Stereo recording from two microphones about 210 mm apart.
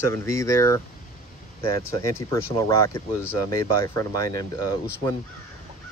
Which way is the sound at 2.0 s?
15° left (ahead or behind).